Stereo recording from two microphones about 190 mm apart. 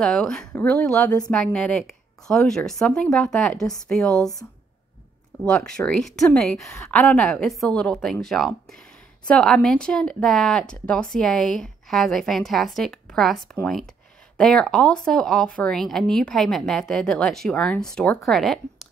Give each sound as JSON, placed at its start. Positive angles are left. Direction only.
{"t": 0.0, "sound": "speech", "side_deg": 5}
{"t": 5.4, "sound": "speech", "side_deg": 5}